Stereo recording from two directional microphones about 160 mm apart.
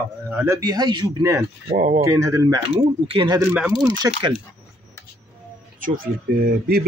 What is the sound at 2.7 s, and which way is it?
Speech, 35° right (ahead or behind).